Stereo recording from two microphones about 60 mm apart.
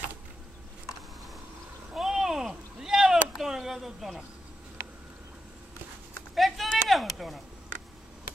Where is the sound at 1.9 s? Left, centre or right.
Centre.